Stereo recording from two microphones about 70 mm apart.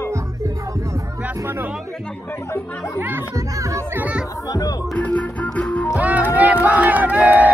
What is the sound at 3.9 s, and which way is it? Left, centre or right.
Chatter, right.